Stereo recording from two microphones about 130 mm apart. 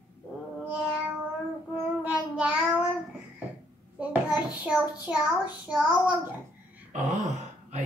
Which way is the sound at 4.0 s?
10° right (ahead or behind).